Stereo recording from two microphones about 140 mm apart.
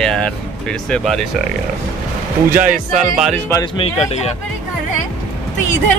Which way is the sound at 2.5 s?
10° right (ahead or behind).